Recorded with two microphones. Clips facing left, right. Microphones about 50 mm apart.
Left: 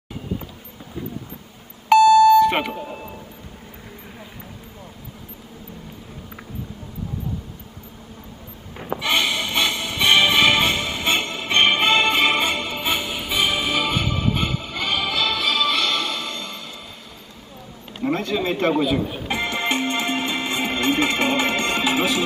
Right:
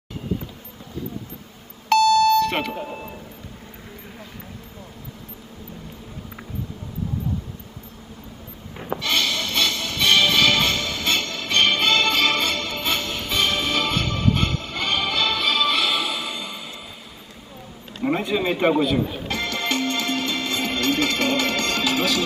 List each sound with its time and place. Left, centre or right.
1.9 s beep: centre
2.7 s speech: centre
8.7 s a sound: centre
9.0 s music: centre
18.0 s a sound: centre
18.7 s speech: centre
19.0 s music: centre